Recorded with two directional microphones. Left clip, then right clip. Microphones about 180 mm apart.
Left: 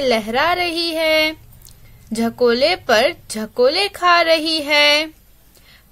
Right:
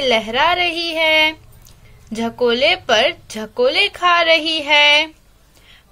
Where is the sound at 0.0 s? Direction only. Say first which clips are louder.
Right 1 dB; 35° left (ahead or behind).